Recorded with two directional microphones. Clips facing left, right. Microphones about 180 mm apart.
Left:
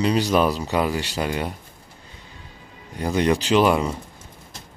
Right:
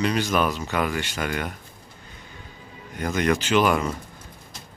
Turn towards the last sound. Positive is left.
turn(degrees=30)  # may be behind; listen again after turning